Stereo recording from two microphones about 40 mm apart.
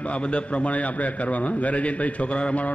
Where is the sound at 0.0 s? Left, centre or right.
Left.